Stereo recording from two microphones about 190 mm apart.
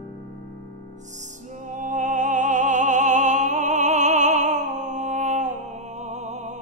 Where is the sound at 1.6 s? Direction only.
40° right (ahead or behind).